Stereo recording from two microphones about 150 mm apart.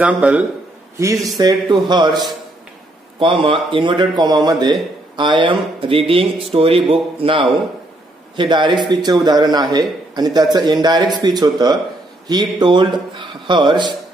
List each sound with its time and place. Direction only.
0.0 s a man's voice: 10° right (ahead or behind)
0.9 s a man's voice: 20° right (ahead or behind)